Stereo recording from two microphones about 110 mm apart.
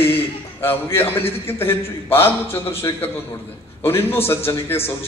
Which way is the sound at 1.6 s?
20° left (ahead or behind).